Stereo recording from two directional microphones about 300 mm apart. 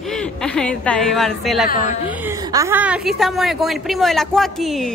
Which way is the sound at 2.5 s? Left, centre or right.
Centre.